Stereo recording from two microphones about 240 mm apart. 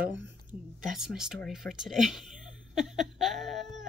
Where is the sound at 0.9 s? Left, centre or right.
Centre.